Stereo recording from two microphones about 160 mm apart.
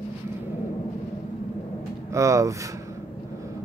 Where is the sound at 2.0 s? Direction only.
20° right (ahead or behind).